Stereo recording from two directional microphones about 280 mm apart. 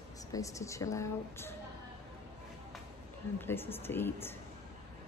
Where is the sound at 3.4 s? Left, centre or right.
Centre.